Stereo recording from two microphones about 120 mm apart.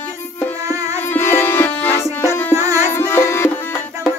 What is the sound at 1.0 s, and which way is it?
Music, 20° left (ahead or behind).